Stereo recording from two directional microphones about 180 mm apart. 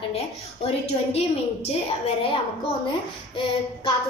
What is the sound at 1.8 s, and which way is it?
Speech, 30° left (ahead or behind).